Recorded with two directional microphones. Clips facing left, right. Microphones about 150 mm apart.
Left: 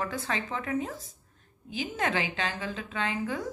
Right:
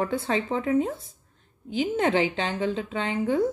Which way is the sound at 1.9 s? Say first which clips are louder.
Right 7 dB; 30° right (ahead or behind).